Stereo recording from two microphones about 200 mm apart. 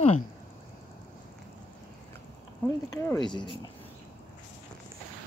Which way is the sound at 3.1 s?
20° left (ahead or behind).